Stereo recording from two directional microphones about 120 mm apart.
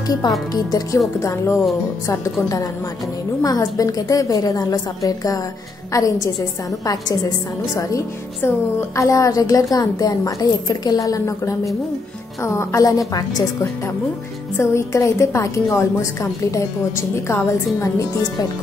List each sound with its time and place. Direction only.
0.5 s a woman's voice: 30° left (ahead or behind)
3.4 s a woman's voice: 30° left (ahead or behind)